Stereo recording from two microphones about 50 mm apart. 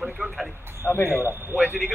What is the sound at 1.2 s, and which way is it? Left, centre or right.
Speech, right.